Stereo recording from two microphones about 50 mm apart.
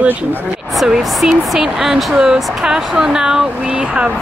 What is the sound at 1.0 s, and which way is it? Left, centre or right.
Speech, centre.